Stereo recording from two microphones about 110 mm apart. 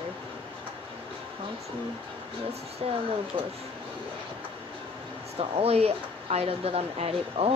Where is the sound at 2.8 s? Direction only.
60° right (ahead or behind).